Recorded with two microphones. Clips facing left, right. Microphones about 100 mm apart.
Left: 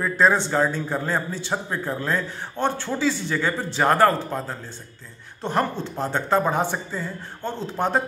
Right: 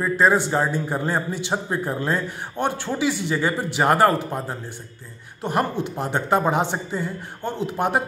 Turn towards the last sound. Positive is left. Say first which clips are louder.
# right 1 dB
turn(degrees=-15)  # may be behind; listen again after turning